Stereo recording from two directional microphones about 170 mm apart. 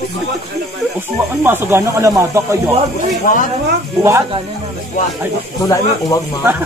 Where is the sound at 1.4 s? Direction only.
15° right (ahead or behind).